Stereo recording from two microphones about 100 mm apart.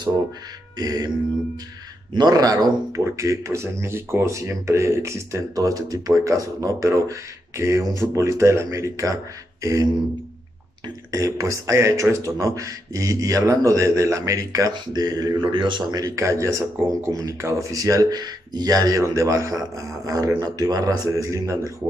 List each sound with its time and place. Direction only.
0.7 s speech: 40° right (ahead or behind)
2.1 s speech: 40° right (ahead or behind)
11.1 s speech: 35° right (ahead or behind)
15.5 s speech: 50° right (ahead or behind); by 21.7 s 30° right (ahead or behind)